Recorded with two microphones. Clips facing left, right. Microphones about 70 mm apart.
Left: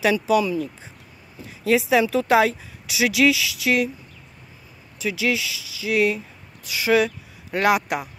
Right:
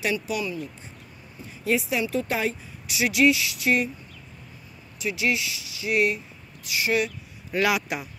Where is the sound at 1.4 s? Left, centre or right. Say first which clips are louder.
Left 5 dB; left.